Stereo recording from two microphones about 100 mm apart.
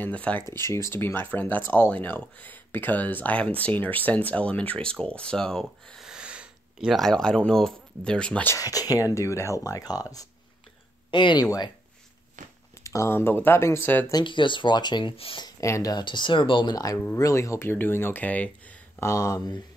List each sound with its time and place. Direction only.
0.0 s speech: 15° left (ahead or behind)
0.6 s speech: 30° left (ahead or behind); by 6.0 s 5° left (ahead or behind)
6.0 s sniff: 10° right (ahead or behind)
7.0 s speech: 5° left (ahead or behind)
8.5 s speech: 35° left (ahead or behind)
11.1 s speech: 50° left (ahead or behind)
12.8 s speech: 30° left (ahead or behind)
14.1 s speech: 55° left (ahead or behind)
15.6 s speech: 30° left (ahead or behind)
15.9 s speech: 50° left (ahead or behind); by 18.5 s 15° left (ahead or behind)
18.9 s speech: 35° left (ahead or behind)